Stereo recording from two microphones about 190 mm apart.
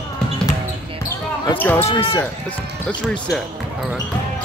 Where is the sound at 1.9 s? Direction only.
25° left (ahead or behind).